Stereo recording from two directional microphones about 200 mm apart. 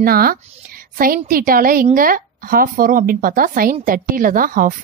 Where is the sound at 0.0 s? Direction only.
50° right (ahead or behind).